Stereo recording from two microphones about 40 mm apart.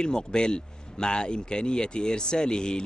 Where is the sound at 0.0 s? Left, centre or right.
Centre.